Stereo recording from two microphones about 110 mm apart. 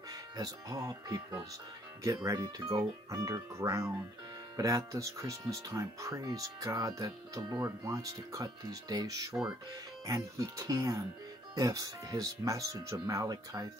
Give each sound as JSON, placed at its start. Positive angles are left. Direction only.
{"t": 0.4, "sound": "speech", "side_deg": -30}